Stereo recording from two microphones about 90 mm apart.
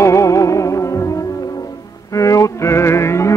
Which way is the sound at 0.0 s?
35° left (ahead or behind).